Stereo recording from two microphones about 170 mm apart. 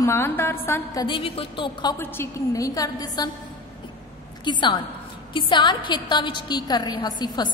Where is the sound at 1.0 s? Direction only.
30° left (ahead or behind).